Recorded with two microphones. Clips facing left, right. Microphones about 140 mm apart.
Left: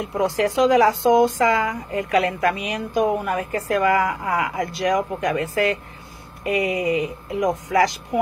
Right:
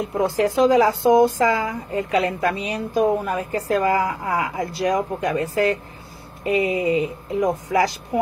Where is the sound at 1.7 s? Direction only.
30° right (ahead or behind).